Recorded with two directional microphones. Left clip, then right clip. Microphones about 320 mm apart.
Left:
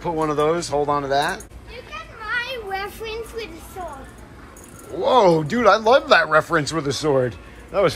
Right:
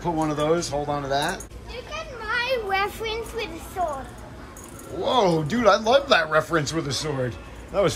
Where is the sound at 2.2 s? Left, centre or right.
Centre.